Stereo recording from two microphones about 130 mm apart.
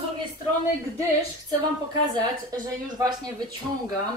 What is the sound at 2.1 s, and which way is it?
A woman's voice, 30° right (ahead or behind).